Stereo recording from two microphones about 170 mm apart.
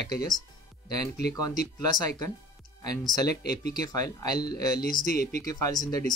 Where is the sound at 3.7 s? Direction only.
20° left (ahead or behind).